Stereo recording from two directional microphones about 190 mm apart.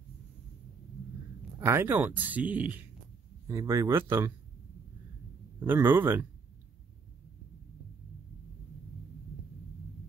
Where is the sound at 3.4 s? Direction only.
20° right (ahead or behind).